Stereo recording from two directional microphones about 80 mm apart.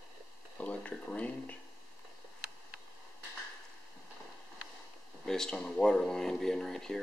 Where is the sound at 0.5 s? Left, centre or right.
Centre.